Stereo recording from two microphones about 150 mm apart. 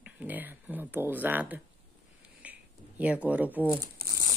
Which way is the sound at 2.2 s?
10° right (ahead or behind).